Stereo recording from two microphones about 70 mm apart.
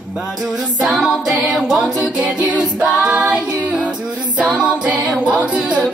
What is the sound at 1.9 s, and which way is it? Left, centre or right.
A capella, centre.